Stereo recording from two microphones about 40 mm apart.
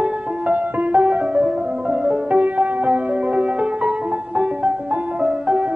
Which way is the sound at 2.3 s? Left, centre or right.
Right.